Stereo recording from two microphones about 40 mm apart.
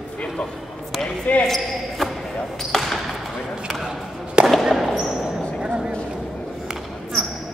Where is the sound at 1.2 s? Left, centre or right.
Left.